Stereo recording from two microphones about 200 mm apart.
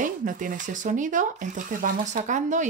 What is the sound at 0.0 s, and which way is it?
Speech, 40° right (ahead or behind).